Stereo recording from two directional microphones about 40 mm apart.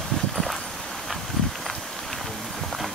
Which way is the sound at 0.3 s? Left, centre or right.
Centre.